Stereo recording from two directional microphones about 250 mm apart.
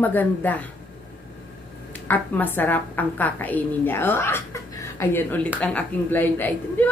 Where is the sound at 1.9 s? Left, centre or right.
Centre.